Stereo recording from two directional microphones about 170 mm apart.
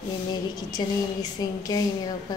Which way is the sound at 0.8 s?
25° left (ahead or behind).